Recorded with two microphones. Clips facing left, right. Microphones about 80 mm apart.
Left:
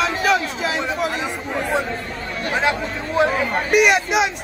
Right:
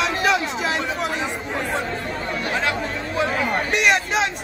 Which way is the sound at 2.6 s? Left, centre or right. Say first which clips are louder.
Left 3 dB; left.